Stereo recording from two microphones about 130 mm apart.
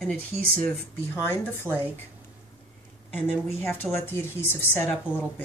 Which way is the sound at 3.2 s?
15° left (ahead or behind).